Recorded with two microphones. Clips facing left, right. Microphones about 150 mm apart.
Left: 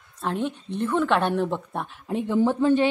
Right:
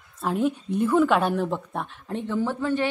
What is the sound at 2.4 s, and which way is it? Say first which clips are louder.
Speech: left 6 dB; 20° left (ahead or behind).